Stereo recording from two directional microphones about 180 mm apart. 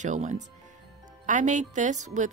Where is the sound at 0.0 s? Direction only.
40° right (ahead or behind).